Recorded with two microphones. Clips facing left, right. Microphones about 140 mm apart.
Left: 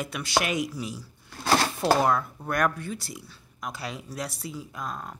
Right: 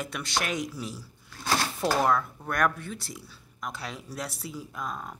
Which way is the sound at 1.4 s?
70° left (ahead or behind).